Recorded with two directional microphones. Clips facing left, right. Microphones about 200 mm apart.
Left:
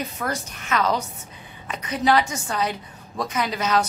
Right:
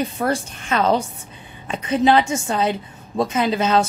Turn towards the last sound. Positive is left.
turn(degrees=-25)  # may be behind; listen again after turning